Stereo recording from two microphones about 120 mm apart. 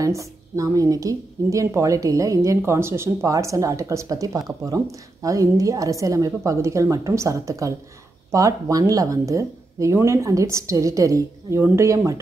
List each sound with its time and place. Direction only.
0.0 s a woman's voice: 25° right (ahead or behind)